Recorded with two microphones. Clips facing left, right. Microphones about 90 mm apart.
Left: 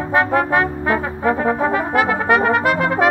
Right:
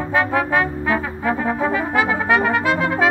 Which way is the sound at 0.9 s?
45° left (ahead or behind).